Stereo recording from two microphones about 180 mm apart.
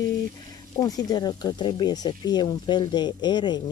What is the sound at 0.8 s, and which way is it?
Speech, 20° left (ahead or behind).